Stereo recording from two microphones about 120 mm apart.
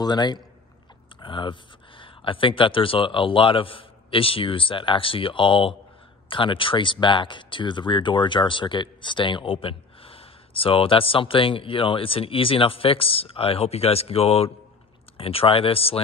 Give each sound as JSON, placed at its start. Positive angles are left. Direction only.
{"t": 0.0, "sound": "a man's voice", "side_deg": 35}